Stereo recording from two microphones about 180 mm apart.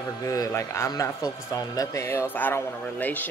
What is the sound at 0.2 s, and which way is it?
Speech, 20° left (ahead or behind).